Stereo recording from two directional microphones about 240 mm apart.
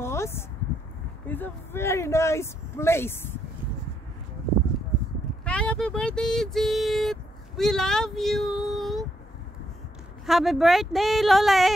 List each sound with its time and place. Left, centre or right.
0.0 s a sound: centre
1.2 s speech: centre
5.4 s speech: centre
10.2 s speech: centre